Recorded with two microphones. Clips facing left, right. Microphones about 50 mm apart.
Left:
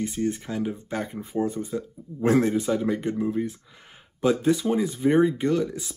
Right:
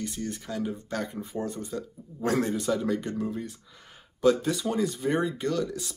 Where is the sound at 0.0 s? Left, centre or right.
Left.